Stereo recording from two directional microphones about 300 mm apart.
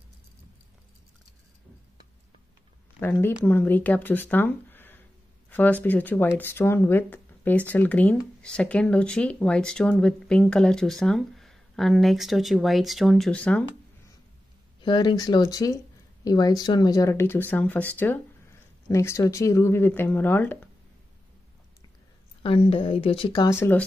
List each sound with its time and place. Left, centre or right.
3.0 s speech: centre
14.8 s speech: centre
22.4 s speech: centre